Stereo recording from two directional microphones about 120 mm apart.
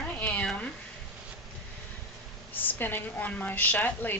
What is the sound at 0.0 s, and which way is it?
Cat, 10° left (ahead or behind).